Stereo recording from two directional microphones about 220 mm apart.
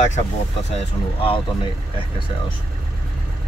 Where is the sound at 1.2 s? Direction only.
25° left (ahead or behind).